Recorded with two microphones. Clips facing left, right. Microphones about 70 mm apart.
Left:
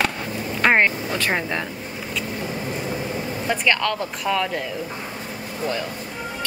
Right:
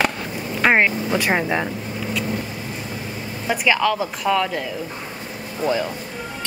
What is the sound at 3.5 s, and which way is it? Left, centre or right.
Speech, centre.